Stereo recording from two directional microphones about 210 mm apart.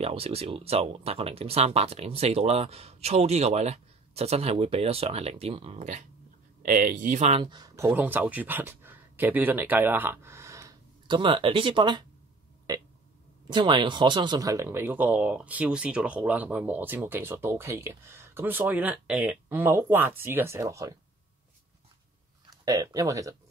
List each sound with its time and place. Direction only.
0.0 s speech: 30° right (ahead or behind)
7.4 s speech: 20° right (ahead or behind)
13.5 s speech: 20° right (ahead or behind)
22.5 s speech: 15° right (ahead or behind)